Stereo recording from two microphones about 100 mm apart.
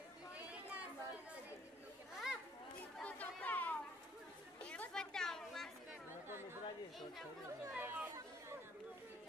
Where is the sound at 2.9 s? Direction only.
15° left (ahead or behind).